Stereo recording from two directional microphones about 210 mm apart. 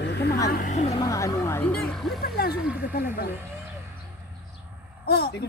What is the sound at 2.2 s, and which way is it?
Speech, 45° left (ahead or behind).